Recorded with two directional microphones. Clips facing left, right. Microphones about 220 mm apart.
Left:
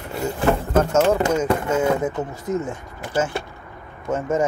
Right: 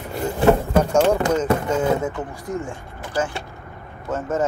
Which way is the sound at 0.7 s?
15° right (ahead or behind).